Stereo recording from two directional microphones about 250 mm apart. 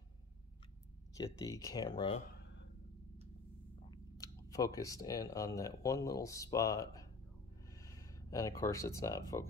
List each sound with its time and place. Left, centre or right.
1.1 s speech: centre
2.3 s a sound: left
3.9 s speech: centre